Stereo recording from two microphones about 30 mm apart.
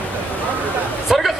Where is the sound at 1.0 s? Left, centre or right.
Centre.